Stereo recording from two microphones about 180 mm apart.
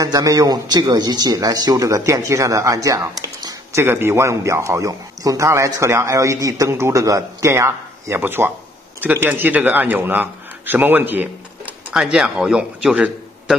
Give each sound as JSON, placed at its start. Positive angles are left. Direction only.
{"t": 0.0, "sound": "a man's voice", "side_deg": -20}